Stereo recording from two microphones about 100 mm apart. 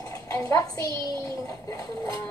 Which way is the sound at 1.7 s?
35° left (ahead or behind).